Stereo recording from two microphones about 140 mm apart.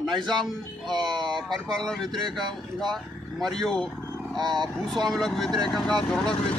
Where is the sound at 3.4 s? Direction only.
Centre (ahead or behind).